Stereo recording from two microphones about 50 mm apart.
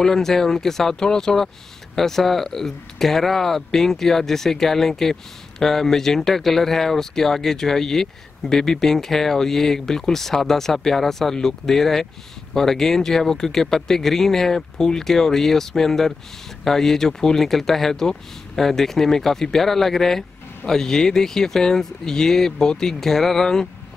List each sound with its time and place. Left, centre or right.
0.0 s speech: centre